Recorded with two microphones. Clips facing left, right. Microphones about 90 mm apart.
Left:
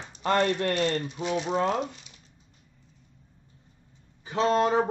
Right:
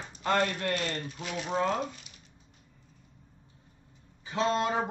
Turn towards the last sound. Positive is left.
turn(degrees=35)  # may be behind; listen again after turning